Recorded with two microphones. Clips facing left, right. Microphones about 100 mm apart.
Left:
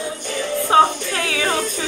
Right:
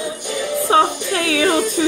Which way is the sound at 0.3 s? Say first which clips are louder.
Right 1 dB; 15° right (ahead or behind).